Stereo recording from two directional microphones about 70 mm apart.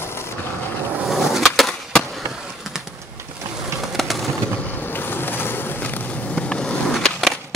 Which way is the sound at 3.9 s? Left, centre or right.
Centre.